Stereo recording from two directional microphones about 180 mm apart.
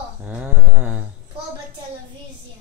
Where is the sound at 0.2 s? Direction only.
5° right (ahead or behind).